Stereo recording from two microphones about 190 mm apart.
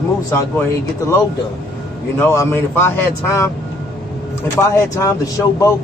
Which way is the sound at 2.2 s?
15° left (ahead or behind).